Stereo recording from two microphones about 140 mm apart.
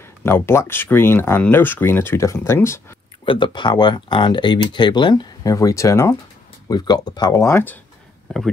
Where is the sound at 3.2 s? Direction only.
35° left (ahead or behind); by 7.8 s 15° left (ahead or behind).